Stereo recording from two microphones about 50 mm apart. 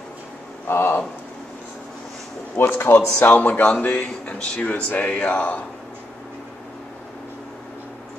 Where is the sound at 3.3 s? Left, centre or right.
Left.